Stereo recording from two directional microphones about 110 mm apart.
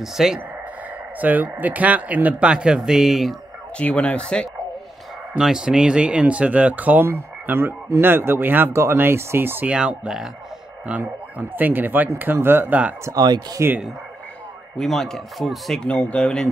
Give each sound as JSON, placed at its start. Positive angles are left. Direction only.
{"t": 0.0, "sound": "speech", "side_deg": -5}
{"t": 1.2, "sound": "speech", "side_deg": -15}
{"t": 3.7, "sound": "speech", "side_deg": 10}
{"t": 5.4, "sound": "speech", "side_deg": -5}
{"t": 13.0, "sound": "speech", "side_deg": -35}
{"t": 14.8, "sound": "speech", "side_deg": 5}